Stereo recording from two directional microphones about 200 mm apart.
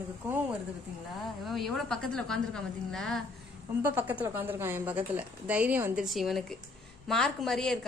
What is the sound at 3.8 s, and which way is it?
A woman's voice, 10° right (ahead or behind).